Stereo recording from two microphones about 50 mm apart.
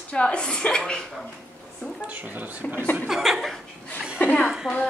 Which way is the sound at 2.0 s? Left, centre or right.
Right.